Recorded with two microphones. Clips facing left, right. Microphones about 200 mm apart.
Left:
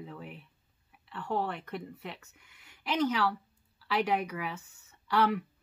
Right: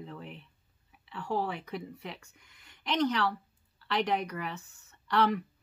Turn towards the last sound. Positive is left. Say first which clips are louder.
# even
turn(degrees=5)  # may be behind; listen again after turning